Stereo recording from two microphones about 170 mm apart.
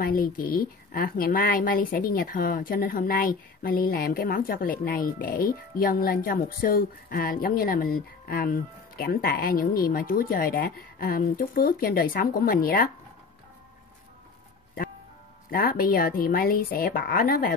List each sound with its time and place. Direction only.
0.0 s a woman's voice: 60° left (ahead or behind)
15.5 s a woman's voice: 60° left (ahead or behind)